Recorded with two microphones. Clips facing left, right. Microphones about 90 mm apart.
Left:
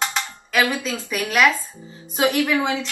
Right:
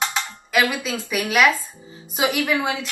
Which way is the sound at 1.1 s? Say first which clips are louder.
Even; 10° right (ahead or behind).